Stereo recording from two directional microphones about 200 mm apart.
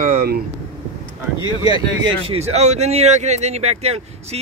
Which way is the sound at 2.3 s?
35° right (ahead or behind).